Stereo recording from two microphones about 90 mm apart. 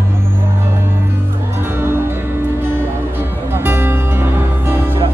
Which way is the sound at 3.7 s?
25° right (ahead or behind).